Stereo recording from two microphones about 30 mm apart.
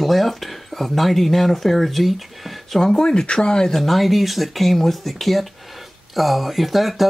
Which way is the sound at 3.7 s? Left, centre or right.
Centre.